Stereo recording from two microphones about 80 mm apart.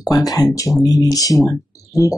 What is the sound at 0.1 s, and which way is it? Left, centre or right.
Speech, left.